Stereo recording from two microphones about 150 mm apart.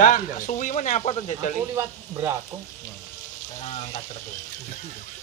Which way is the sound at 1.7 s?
20° right (ahead or behind).